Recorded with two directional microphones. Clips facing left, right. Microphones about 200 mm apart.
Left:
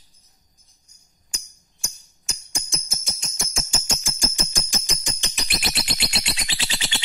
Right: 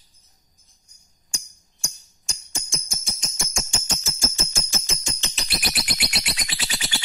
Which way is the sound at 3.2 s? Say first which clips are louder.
Right 1 dB; centre (ahead or behind).